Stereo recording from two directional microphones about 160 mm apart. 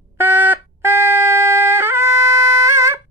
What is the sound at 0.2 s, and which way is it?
Trumpet, 10° right (ahead or behind).